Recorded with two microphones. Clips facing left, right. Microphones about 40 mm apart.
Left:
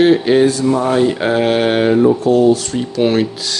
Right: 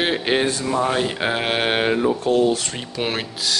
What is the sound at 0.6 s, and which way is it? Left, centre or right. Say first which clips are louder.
Speech: left 7 dB; centre.